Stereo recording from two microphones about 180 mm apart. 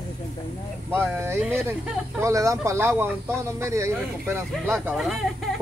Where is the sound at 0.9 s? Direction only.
10° right (ahead or behind).